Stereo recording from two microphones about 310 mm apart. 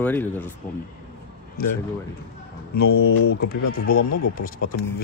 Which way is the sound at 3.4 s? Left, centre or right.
Left.